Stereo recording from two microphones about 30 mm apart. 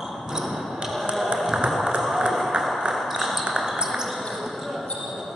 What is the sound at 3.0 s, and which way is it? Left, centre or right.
Ping, centre.